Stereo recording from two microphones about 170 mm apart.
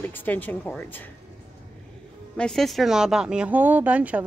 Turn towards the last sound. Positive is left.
turn(degrees=-10)  # may be behind; listen again after turning